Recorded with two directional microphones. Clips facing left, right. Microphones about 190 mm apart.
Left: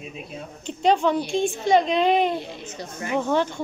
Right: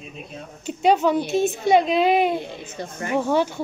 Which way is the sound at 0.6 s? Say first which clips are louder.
Right 2 dB; 5° right (ahead or behind).